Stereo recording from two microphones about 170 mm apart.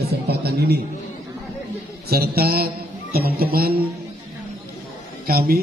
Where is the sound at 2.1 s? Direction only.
65° right (ahead or behind).